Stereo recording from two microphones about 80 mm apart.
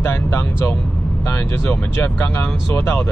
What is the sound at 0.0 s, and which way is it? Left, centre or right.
Speech, left.